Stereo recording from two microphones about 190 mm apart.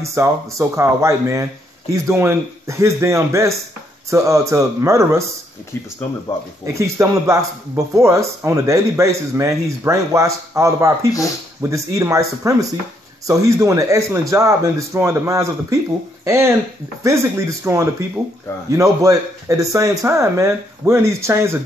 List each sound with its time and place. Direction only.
0.0 s speech: 15° right (ahead or behind)
6.6 s speech: 15° right (ahead or behind)